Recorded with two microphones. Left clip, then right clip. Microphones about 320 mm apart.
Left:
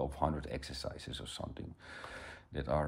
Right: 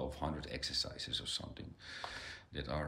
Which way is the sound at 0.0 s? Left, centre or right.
Centre.